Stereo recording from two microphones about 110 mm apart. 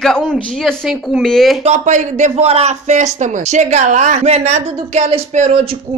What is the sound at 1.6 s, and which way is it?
A man's voice, 90° right.